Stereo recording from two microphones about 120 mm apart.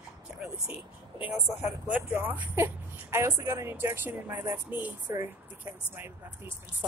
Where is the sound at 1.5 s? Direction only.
70° left (ahead or behind).